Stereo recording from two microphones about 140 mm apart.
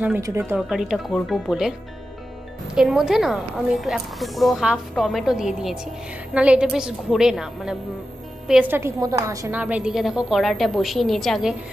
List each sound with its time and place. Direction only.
0.0 s a woman's voice: 15° right (ahead or behind)
0.6 s a woman's voice: 5° right (ahead or behind); by 9.5 s 25° right (ahead or behind)
9.5 s a woman's voice: 10° right (ahead or behind)